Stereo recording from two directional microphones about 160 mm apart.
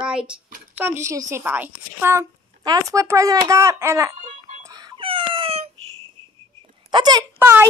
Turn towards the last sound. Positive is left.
turn(degrees=-15)  # may be behind; listen again after turning